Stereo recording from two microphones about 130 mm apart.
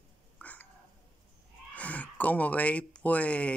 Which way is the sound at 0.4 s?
10° left (ahead or behind).